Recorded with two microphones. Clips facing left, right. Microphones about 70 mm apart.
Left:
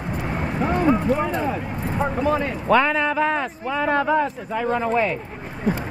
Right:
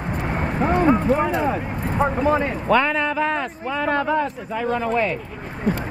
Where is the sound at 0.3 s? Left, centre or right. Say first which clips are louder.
Right 2 dB; right.